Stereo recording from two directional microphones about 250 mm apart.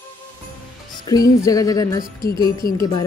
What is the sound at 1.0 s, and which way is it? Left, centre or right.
Music, centre.